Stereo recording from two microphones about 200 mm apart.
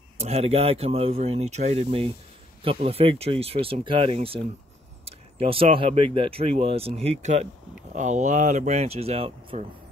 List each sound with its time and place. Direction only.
0.2 s speech: 30° right (ahead or behind)